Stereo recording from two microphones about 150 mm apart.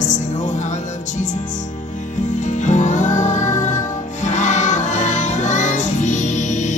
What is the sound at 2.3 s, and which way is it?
Music, 55° left (ahead or behind).